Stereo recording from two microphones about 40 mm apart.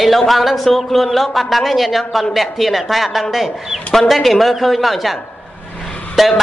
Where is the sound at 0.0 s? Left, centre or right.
Centre.